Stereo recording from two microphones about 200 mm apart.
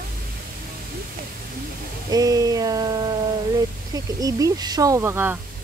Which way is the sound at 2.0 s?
20° right (ahead or behind).